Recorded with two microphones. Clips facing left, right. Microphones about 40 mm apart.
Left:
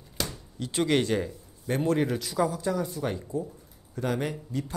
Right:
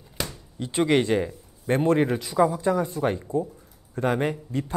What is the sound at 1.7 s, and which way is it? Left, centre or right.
A man's voice, right.